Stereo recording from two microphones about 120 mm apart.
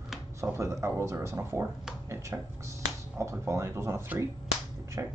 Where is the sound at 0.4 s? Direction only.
25° right (ahead or behind).